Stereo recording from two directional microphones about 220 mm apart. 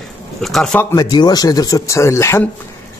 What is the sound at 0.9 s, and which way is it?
A man's voice, 20° left (ahead or behind).